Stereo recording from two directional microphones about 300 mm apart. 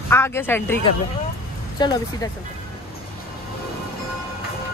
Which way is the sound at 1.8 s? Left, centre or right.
Centre.